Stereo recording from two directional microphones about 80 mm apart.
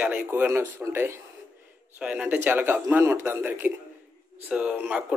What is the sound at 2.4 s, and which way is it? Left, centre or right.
Speech, right.